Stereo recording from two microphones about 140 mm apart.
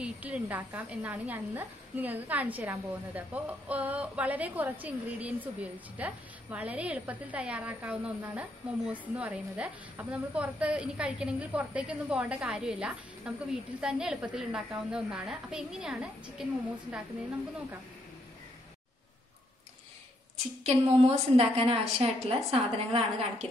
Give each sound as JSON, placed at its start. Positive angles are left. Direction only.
{"t": 0.0, "sound": "a woman's voice", "side_deg": -10}
{"t": 20.6, "sound": "a woman's voice", "side_deg": -45}